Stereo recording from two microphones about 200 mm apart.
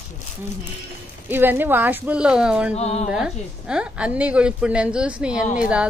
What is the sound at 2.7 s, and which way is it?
Music, 35° left (ahead or behind).